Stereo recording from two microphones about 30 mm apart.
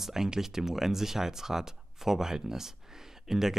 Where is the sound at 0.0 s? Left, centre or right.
Centre.